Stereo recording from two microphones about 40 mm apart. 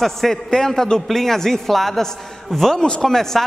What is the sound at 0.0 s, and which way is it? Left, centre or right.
Speech, centre.